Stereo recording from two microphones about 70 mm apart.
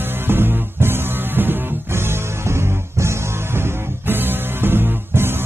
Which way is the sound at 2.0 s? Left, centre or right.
Right.